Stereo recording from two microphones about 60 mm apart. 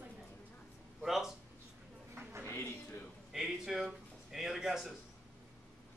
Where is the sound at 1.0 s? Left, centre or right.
Centre.